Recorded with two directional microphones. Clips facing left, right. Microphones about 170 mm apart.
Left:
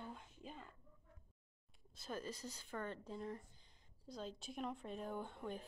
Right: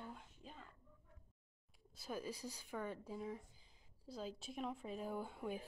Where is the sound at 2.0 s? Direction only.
10° right (ahead or behind).